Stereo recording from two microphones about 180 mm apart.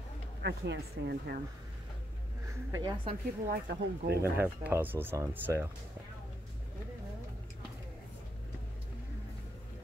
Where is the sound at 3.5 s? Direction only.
65° right (ahead or behind).